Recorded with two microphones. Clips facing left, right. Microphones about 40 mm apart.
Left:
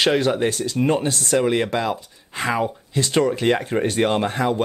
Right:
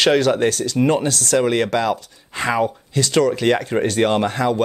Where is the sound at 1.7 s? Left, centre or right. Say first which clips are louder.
Right 3 dB; right.